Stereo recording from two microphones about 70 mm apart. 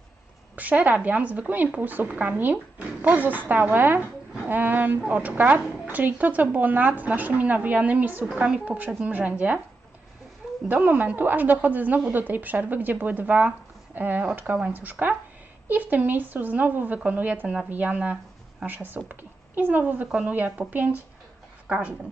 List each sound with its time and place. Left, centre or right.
0.6 s a woman's voice: right
10.7 s a woman's voice: right
20.1 s speech: centre
20.3 s a woman's voice: right